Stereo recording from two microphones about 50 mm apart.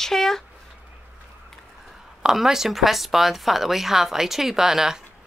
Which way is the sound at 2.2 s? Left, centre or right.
Centre.